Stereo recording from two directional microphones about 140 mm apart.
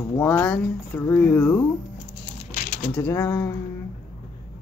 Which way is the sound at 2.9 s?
15° left (ahead or behind).